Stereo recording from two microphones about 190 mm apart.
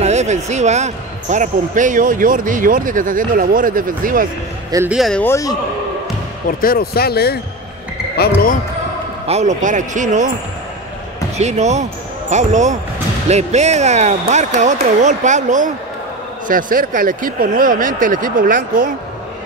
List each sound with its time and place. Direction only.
0.0 s speech: 35° right (ahead or behind)
4.8 s speech: centre (ahead or behind)
5.2 s a man's voice: 15° left (ahead or behind)
6.6 s speech: 50° left (ahead or behind)
9.3 s speech: 40° right (ahead or behind)
11.3 s speech: 35° right (ahead or behind)